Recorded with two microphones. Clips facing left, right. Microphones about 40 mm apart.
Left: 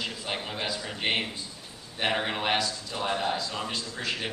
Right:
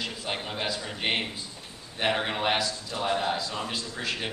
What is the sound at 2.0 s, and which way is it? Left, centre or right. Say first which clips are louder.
A man's voice: right 1 dB; centre.